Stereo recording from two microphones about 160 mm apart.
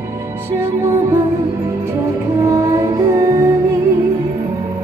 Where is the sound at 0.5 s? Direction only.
15° right (ahead or behind).